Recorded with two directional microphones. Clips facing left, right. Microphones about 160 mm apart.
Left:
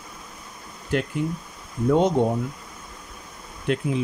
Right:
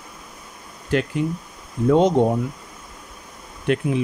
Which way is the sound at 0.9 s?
90° right.